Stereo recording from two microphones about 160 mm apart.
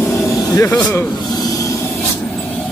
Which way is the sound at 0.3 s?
20° left (ahead or behind).